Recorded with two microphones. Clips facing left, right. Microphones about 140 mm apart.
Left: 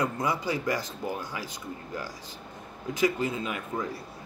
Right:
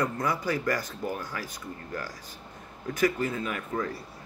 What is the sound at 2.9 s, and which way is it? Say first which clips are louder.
Speech: even; 20° left (ahead or behind).